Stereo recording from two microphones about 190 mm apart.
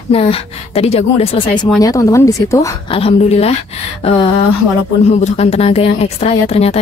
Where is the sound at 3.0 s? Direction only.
35° left (ahead or behind).